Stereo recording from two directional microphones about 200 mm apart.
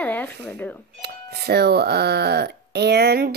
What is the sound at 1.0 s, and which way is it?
Speech, 55° right (ahead or behind).